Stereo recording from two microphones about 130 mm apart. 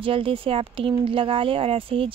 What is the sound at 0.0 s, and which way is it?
Speech, 45° right (ahead or behind).